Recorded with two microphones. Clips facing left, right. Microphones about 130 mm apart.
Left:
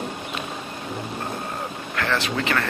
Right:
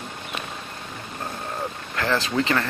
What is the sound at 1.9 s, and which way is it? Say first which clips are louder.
Speech: right 2 dB; 25° right (ahead or behind).